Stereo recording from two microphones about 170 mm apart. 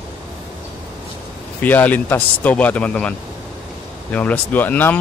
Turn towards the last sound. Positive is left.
turn(degrees=10)  # may be behind; listen again after turning